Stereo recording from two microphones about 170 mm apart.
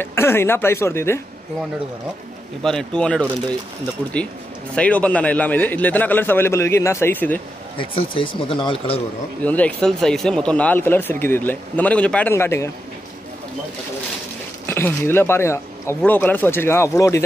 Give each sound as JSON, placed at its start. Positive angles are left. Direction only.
{"t": 0.0, "sound": "speech", "side_deg": 15}
{"t": 2.6, "sound": "speech", "side_deg": 5}
{"t": 4.7, "sound": "speech", "side_deg": 10}
{"t": 7.7, "sound": "speech", "side_deg": 30}
{"t": 9.4, "sound": "speech", "side_deg": 10}
{"t": 14.7, "sound": "speech", "side_deg": 15}